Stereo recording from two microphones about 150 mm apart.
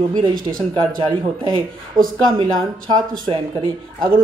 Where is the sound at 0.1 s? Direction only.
30° right (ahead or behind).